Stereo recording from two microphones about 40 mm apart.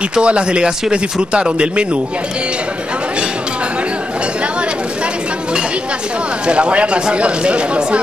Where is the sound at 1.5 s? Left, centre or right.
Right.